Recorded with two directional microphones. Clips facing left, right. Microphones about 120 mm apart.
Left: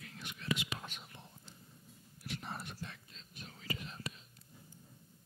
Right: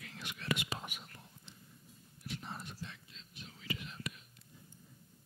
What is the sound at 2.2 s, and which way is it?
Whispering, 65° left (ahead or behind).